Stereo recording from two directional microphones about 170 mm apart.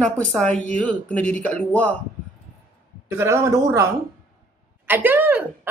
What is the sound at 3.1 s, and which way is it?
Speech, 15° right (ahead or behind).